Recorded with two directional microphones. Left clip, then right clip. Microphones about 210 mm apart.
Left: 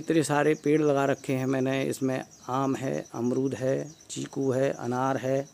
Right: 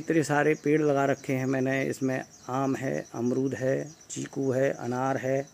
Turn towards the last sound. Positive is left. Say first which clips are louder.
# left 1 dB
turn(degrees=10)  # may be behind; listen again after turning